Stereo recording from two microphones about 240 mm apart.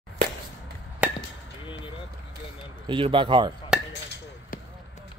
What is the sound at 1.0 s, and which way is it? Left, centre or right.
Chop, centre.